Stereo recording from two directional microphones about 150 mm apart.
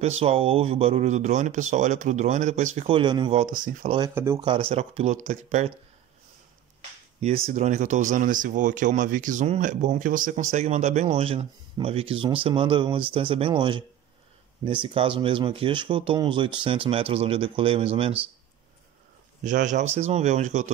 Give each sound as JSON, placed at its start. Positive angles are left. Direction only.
{"t": 0.0, "sound": "speech", "side_deg": -40}
{"t": 3.4, "sound": "speech", "side_deg": -65}
{"t": 4.1, "sound": "speech", "side_deg": -15}
{"t": 4.4, "sound": "speech", "side_deg": -35}
{"t": 7.2, "sound": "speech", "side_deg": -45}
{"t": 19.4, "sound": "speech", "side_deg": -55}